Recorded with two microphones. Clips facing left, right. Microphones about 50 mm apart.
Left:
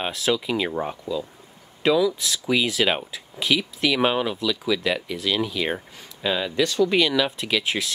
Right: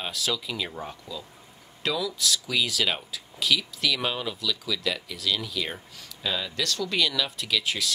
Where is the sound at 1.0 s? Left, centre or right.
Centre.